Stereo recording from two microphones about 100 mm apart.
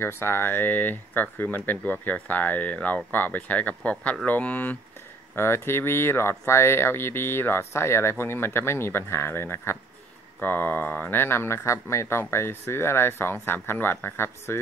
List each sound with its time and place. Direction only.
0.0 s speech: 20° left (ahead or behind)